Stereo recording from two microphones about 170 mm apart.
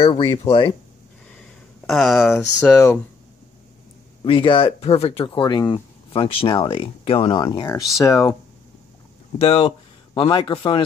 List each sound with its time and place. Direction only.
0.0 s speech: 30° left (ahead or behind)
1.9 s speech: centre (ahead or behind)
2.3 s speech: 15° left (ahead or behind)
4.2 s speech: 30° left (ahead or behind)
9.4 s speech: 35° left (ahead or behind)